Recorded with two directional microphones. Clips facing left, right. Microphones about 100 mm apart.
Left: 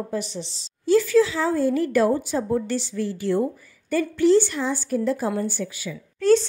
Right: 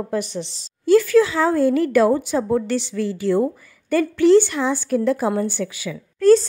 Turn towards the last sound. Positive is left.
turn(degrees=-40)  # may be behind; listen again after turning